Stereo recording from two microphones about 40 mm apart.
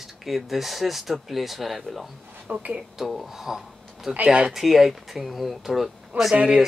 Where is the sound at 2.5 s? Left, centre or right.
Right.